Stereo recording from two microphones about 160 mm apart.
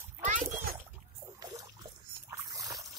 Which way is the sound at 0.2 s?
55° right (ahead or behind).